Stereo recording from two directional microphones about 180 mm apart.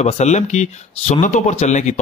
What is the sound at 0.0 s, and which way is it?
Speech, 40° left (ahead or behind).